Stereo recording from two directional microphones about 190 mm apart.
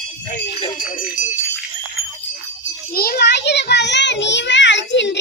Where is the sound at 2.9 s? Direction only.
55° left (ahead or behind).